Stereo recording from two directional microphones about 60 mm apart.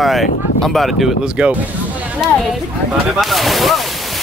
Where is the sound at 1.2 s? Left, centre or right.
Centre.